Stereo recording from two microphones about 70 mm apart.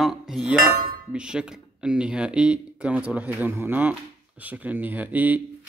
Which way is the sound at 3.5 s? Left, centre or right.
Right.